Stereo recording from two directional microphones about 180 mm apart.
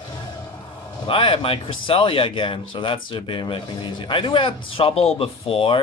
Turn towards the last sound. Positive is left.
turn(degrees=30)  # may be behind; listen again after turning